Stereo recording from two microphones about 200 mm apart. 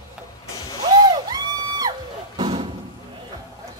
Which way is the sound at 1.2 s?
20° right (ahead or behind).